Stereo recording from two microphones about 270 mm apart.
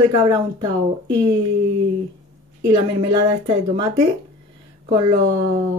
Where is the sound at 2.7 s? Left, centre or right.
Centre.